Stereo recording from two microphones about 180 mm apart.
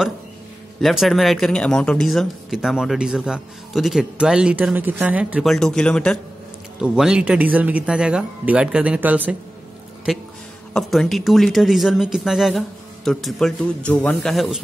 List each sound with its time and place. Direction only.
0.7 s speech: centre (ahead or behind)
10.7 s speech: centre (ahead or behind)